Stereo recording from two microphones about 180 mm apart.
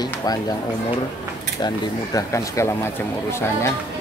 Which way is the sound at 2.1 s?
15° left (ahead or behind).